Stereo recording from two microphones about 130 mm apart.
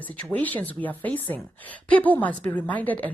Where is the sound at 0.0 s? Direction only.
10° left (ahead or behind).